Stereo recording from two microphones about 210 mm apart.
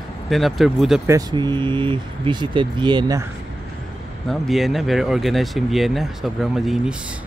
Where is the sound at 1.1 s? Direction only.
20° right (ahead or behind).